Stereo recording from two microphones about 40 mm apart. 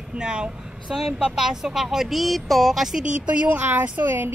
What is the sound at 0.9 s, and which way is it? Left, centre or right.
Speech, centre.